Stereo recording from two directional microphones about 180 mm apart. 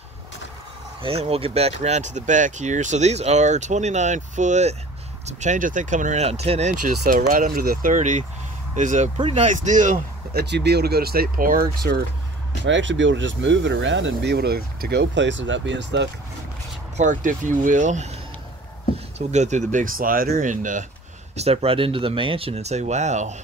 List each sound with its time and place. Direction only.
1.0 s speech: 35° right (ahead or behind)
10.4 s speech: 70° right (ahead or behind); by 11.6 s 50° right (ahead or behind)
12.6 s speech: 90° right
16.9 s speech: 45° right (ahead or behind)
19.1 s speech: 40° right (ahead or behind)
21.4 s speech: 35° right (ahead or behind)